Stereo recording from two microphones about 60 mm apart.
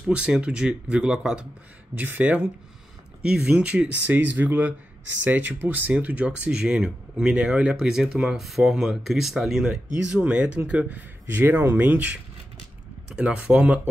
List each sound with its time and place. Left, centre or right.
0.1 s speech: centre
2.0 s speech: right
3.2 s speech: centre
4.1 s speech: right
11.4 s speech: right
11.8 s speech: right